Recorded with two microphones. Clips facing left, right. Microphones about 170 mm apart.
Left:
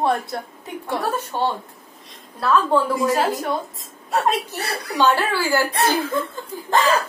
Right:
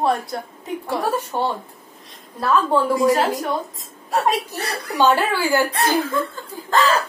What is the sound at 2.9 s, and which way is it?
A woman's voice, centre (ahead or behind).